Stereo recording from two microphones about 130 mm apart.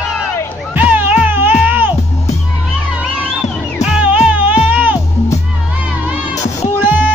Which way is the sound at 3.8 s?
10° right (ahead or behind).